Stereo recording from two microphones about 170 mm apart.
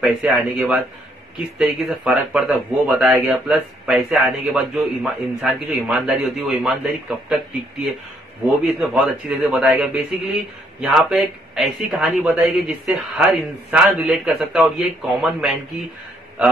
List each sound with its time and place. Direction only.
0.0 s a man's voice: centre (ahead or behind)
1.9 s a man's voice: 5° right (ahead or behind)
8.6 s a man's voice: centre (ahead or behind)